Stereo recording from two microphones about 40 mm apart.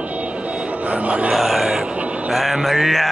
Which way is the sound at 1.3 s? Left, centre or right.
Centre.